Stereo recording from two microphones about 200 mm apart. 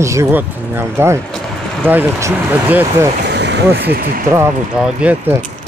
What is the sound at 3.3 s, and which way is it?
Vehicle, 60° right (ahead or behind).